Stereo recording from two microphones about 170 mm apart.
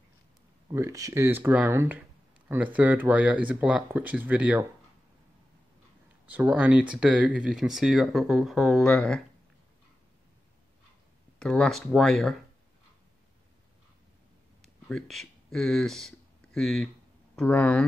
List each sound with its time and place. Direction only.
0.7 s speech: 20° right (ahead or behind)
6.2 s speech: 10° right (ahead or behind)
11.3 s speech: 5° left (ahead or behind)
14.6 s speech: centre (ahead or behind)